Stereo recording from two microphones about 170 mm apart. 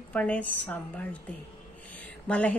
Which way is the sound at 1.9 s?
10° left (ahead or behind).